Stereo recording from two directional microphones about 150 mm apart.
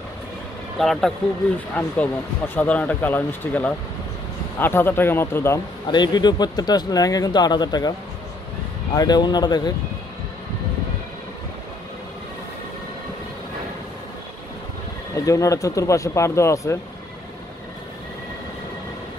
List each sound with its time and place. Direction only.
0.7 s speech: centre (ahead or behind); by 5.6 s 15° left (ahead or behind)
5.9 s speech: 30° left (ahead or behind)
8.9 s speech: 25° left (ahead or behind)
15.1 s speech: 20° left (ahead or behind)